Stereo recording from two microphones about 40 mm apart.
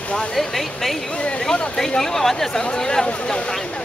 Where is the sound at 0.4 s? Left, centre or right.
Centre.